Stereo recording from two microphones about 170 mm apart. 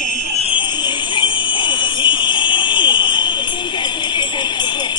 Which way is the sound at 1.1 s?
25° left (ahead or behind).